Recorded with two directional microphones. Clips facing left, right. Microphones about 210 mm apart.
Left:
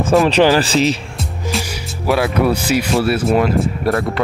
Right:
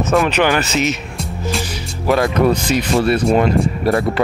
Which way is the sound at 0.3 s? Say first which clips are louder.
Left 4 dB; 30° left (ahead or behind).